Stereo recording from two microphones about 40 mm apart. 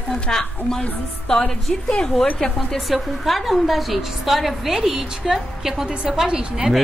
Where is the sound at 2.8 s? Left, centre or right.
Centre.